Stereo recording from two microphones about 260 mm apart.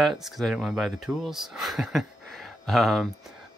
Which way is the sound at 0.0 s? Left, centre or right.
Centre.